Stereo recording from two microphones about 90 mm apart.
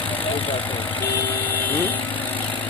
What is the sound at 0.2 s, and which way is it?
Engine, 90° left.